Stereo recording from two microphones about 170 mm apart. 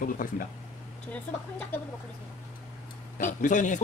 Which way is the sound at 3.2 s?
50° left (ahead or behind).